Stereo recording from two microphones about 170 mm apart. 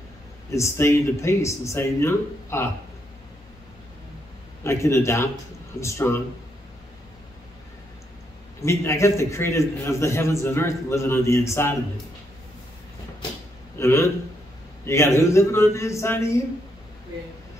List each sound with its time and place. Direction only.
0.5 s a man's voice: 15° left (ahead or behind)
4.6 s a man's voice: 15° left (ahead or behind)
8.6 s a man's voice: 15° left (ahead or behind)
13.7 s a man's voice: 15° left (ahead or behind)